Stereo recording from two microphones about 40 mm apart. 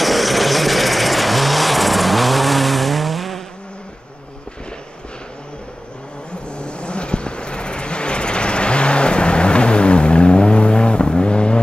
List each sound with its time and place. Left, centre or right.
0.0 s vehicle: centre
6.6 s vehicle: left